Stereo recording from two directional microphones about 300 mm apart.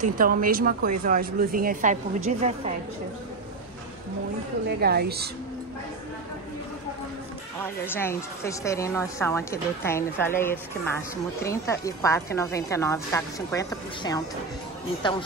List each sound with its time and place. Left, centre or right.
0.0 s speech: right
4.7 s a woman's voice: right
7.8 s a woman's voice: centre